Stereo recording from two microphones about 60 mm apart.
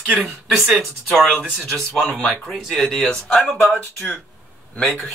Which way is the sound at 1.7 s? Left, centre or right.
Centre.